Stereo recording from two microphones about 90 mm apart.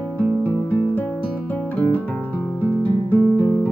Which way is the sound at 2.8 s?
20° left (ahead or behind).